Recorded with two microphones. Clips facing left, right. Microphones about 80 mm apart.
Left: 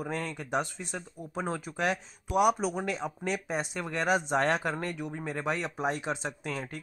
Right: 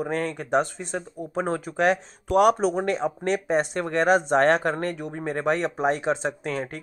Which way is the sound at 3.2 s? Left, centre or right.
Right.